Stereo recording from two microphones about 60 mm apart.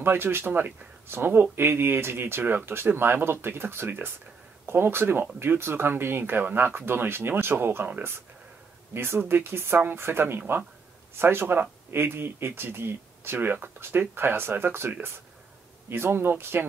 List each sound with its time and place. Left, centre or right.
0.0 s speech: right
5.6 s speech: right